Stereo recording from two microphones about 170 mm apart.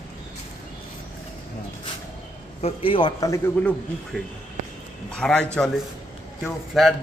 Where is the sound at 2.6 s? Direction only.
30° left (ahead or behind); by 3.7 s 15° left (ahead or behind).